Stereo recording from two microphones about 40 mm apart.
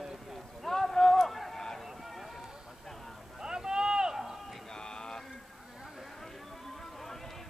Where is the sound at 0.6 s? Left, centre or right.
Centre.